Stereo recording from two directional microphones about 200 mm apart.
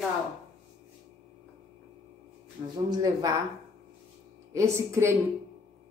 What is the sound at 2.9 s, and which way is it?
Speech, 20° right (ahead or behind).